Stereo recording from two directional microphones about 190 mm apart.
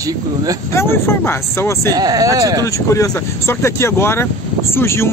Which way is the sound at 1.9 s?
20° right (ahead or behind).